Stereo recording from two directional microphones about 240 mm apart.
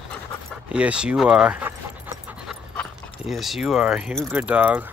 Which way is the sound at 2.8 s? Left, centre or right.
Centre.